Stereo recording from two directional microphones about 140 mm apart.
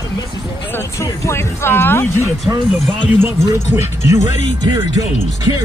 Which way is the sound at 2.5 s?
15° right (ahead or behind).